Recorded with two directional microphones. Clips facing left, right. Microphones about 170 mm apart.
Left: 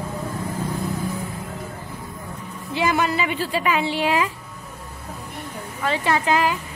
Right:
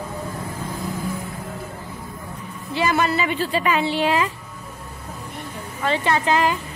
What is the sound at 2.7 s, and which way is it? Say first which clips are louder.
Speech: right 1 dB; 15° left (ahead or behind).